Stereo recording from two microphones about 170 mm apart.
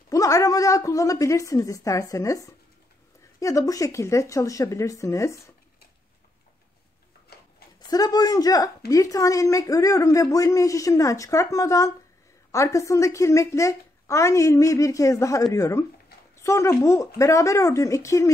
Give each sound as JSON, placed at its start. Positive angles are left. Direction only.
{"t": 0.1, "sound": "a woman's voice", "side_deg": 20}
{"t": 7.3, "sound": "a sound", "side_deg": 70}
{"t": 7.9, "sound": "a woman's voice", "side_deg": 20}